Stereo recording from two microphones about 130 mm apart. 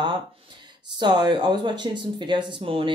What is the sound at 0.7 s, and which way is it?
Speech, 35° right (ahead or behind).